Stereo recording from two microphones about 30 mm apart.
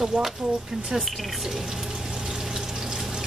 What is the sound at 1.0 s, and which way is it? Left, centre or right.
Speech, centre.